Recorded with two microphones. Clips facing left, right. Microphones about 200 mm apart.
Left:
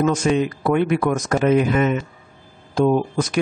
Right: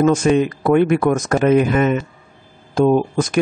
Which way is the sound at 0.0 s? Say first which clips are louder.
Right 4 dB; 50° right (ahead or behind).